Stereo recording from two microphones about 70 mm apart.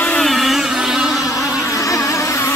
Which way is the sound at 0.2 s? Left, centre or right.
Centre.